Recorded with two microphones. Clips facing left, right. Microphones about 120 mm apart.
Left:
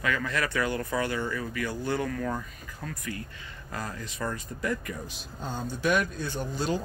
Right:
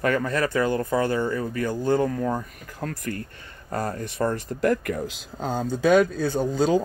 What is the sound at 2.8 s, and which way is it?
Speech, 55° right (ahead or behind).